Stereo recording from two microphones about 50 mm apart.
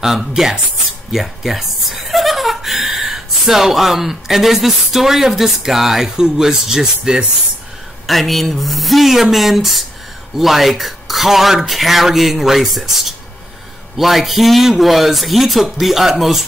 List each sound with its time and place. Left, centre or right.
0.0 s speech: centre
8.1 s speech: centre